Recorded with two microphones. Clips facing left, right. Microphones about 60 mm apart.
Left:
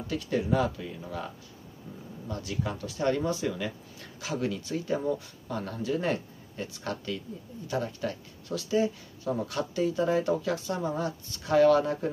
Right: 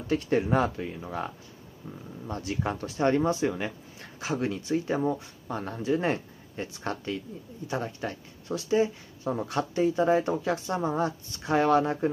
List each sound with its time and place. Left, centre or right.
0.1 s speech: right